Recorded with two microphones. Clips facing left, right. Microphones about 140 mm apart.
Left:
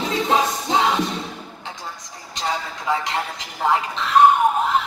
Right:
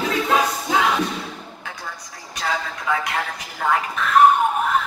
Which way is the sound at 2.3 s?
25° left (ahead or behind).